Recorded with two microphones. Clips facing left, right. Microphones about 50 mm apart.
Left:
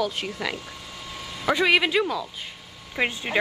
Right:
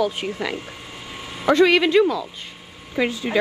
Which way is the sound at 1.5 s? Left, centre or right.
Centre.